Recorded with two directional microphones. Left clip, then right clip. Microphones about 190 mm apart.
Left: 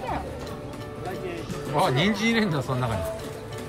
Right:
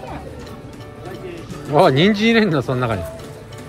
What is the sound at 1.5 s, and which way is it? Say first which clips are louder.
Speech: right 10 dB; 10° left (ahead or behind).